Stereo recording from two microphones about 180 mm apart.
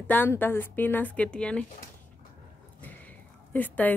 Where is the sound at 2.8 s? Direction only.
10° left (ahead or behind).